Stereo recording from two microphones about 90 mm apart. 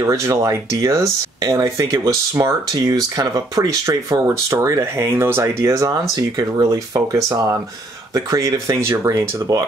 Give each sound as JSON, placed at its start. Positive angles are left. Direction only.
{"t": 0.0, "sound": "speech", "side_deg": -35}